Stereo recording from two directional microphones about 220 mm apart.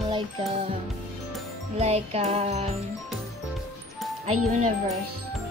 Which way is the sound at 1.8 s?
30° right (ahead or behind).